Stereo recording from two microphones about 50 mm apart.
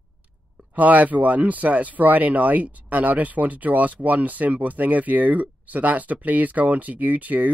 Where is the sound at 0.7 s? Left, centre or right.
Right.